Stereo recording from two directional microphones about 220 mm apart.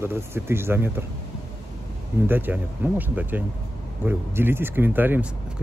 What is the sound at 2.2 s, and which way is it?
Speech, 10° right (ahead or behind).